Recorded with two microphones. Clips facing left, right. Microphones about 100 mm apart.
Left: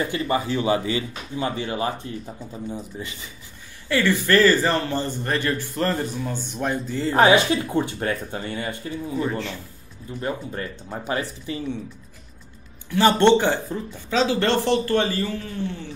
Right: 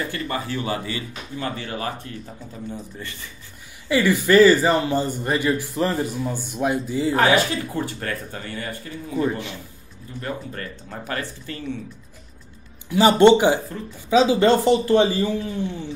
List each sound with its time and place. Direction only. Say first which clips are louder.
0.3 s speech: left 7 dB; 20° left (ahead or behind)
3.9 s speech: right 3 dB; 15° right (ahead or behind)
7.2 s speech: left 4 dB; 20° left (ahead or behind)
10.2 s speech: left 2 dB; 20° left (ahead or behind)
12.9 s speech: right 3 dB; 15° right (ahead or behind)